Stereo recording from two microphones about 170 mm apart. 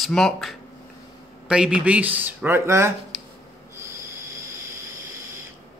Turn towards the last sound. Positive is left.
turn(degrees=-15)  # may be behind; listen again after turning